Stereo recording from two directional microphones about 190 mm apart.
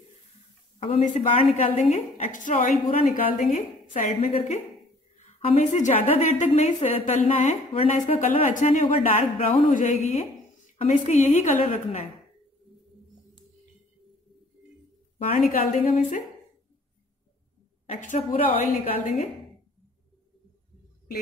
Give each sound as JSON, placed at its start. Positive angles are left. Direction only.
{"t": 0.7, "sound": "a woman's voice", "side_deg": 30}
{"t": 15.2, "sound": "a woman's voice", "side_deg": 45}
{"t": 18.1, "sound": "a woman's voice", "side_deg": 30}
{"t": 18.6, "sound": "a woman's voice", "side_deg": 45}